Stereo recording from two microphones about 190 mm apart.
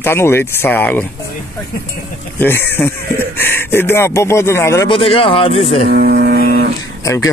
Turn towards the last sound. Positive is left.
turn(degrees=15)  # may be behind; listen again after turning